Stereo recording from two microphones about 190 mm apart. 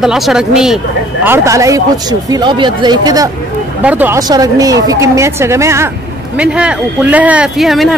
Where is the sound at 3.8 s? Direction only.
10° right (ahead or behind).